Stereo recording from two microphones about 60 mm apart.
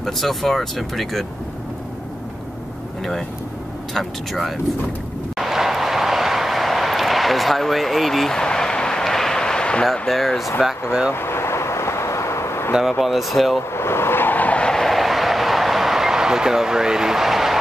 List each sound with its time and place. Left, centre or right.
0.0 s speech: centre
3.0 s speech: centre
5.4 s vehicle: centre
10.0 s speech: centre
10.9 s speech: centre
11.1 s vehicle: left
13.0 s speech: centre
13.7 s vehicle: left
14.6 s vehicle: centre